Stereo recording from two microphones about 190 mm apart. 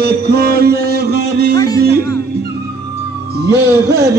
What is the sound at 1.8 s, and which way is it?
Music, 55° right (ahead or behind).